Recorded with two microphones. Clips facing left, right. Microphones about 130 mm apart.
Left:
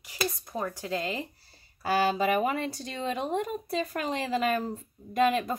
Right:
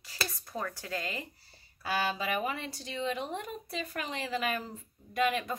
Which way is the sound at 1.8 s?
40° left (ahead or behind).